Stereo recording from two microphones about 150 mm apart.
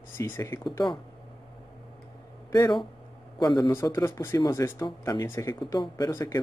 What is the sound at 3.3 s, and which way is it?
Speech, 30° left (ahead or behind).